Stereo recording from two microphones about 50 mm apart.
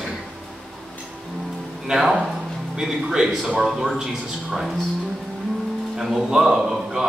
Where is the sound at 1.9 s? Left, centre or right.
Centre.